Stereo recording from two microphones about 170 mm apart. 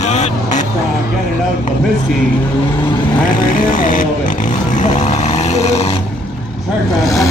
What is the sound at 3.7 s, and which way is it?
Vehicle, 50° left (ahead or behind).